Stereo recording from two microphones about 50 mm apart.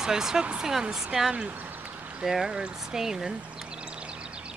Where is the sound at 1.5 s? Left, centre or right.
Right.